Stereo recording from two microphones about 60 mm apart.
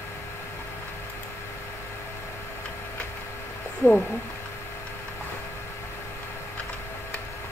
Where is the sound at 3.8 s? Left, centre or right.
Left.